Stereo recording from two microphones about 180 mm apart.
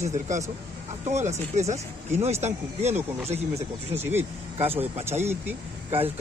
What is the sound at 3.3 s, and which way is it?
Speech, 35° right (ahead or behind).